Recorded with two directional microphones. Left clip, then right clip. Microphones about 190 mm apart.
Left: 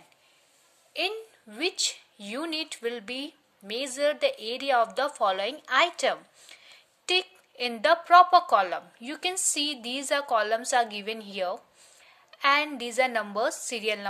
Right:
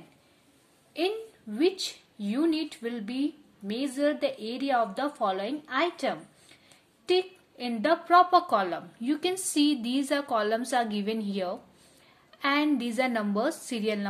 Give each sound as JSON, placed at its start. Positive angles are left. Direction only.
{"t": 0.9, "sound": "a woman's voice", "side_deg": 35}